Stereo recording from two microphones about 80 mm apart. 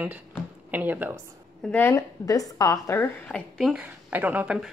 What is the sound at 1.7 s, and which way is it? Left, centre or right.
Speech, left.